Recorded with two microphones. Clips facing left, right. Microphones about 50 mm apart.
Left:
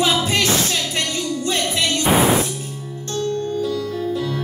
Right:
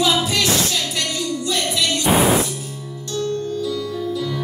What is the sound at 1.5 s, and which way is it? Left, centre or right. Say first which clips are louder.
Music: even; left.